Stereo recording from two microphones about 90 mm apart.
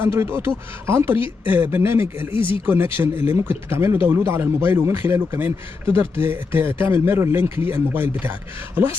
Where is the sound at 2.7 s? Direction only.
25° right (ahead or behind).